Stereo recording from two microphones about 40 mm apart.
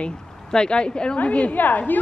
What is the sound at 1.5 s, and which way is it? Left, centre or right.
Speech, left.